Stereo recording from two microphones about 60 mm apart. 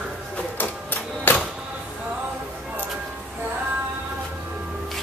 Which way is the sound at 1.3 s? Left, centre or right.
Left.